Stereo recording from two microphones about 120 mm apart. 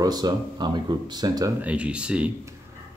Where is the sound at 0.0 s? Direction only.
35° right (ahead or behind).